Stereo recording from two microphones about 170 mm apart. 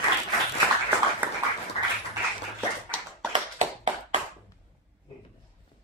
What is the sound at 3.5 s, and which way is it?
Tap, 40° right (ahead or behind).